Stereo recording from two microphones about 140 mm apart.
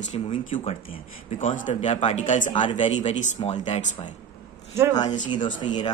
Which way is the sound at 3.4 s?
45° left (ahead or behind).